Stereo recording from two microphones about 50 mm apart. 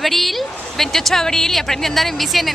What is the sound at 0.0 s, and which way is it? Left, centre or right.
Speech, centre.